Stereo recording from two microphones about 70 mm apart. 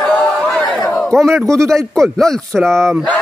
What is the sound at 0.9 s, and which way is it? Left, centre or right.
Battle cry, centre.